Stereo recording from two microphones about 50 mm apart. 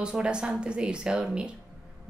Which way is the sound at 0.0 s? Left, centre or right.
Centre.